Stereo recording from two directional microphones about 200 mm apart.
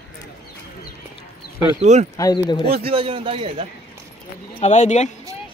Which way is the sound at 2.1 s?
20° left (ahead or behind).